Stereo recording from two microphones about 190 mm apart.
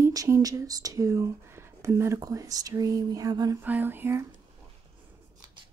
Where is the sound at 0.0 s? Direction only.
15° right (ahead or behind).